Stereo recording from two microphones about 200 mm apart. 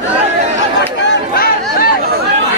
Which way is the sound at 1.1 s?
50° left (ahead or behind).